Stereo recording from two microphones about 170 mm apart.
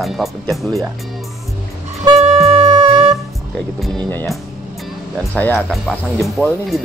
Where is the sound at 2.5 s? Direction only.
35° right (ahead or behind).